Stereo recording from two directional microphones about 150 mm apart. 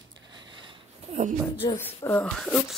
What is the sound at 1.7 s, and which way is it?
Speech, 15° left (ahead or behind).